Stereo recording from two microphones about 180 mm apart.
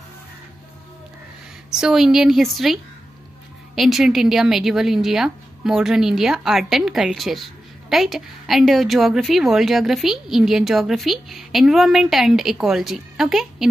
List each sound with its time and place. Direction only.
1.7 s a woman's voice: 5° right (ahead or behind)